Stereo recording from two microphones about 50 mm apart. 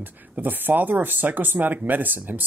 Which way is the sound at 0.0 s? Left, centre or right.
Right.